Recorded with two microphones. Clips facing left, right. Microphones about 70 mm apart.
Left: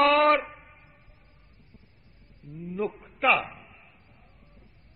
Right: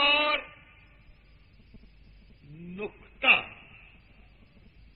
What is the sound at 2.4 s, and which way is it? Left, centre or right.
A man's voice, left.